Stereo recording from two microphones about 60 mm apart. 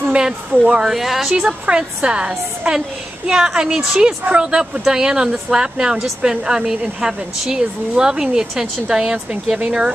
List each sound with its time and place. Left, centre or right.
0.0 s a sound: centre
0.7 s speech: centre
1.3 s a woman's voice: centre